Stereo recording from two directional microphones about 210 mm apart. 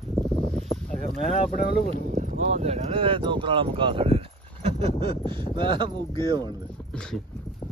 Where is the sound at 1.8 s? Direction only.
35° right (ahead or behind).